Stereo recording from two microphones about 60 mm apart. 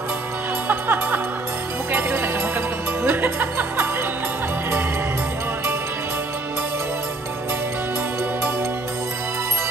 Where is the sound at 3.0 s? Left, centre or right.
Right.